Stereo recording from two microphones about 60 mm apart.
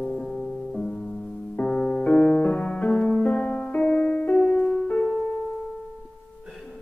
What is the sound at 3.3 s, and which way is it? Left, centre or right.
Music, centre.